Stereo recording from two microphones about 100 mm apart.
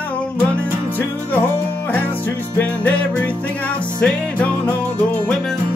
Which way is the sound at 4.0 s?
15° left (ahead or behind).